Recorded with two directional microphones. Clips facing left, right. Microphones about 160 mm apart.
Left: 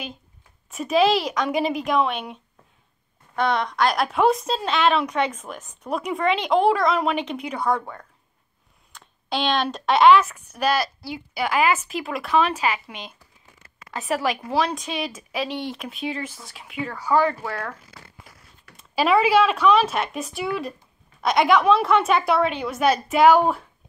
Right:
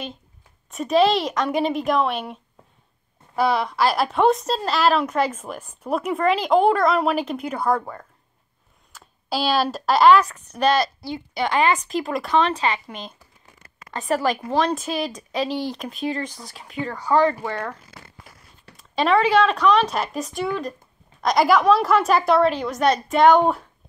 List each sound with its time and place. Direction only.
0.7 s a woman's voice: centre (ahead or behind)
18.8 s a woman's voice: 5° left (ahead or behind)